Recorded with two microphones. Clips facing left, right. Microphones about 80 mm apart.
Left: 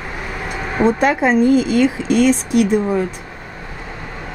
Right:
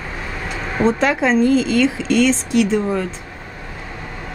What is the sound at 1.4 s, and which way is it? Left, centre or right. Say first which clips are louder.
Speech: left 2 dB; right.